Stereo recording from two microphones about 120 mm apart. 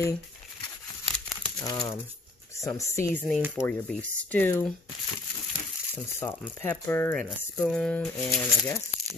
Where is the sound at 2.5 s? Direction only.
25° left (ahead or behind).